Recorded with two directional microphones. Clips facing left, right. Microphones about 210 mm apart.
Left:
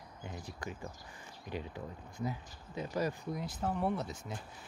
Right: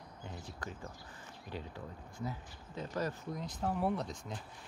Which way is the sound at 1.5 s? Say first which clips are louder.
Left 3 dB; 15° left (ahead or behind).